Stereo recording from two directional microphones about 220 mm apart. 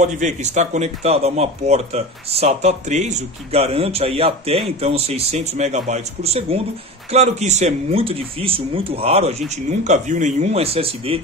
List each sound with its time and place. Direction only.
0.0 s speech: 35° right (ahead or behind)